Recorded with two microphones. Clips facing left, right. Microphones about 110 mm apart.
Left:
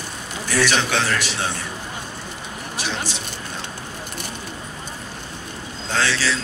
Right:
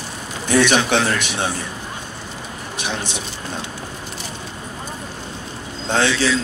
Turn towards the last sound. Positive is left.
turn(degrees=-20)  # may be behind; listen again after turning